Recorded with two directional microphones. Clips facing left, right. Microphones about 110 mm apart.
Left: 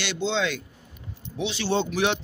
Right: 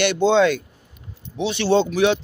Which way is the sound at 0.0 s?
50° right (ahead or behind).